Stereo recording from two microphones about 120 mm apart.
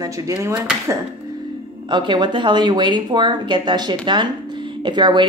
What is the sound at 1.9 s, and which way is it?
Speech, 40° right (ahead or behind).